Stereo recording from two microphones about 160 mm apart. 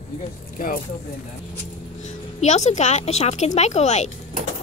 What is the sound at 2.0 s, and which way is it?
Speech, 45° left (ahead or behind).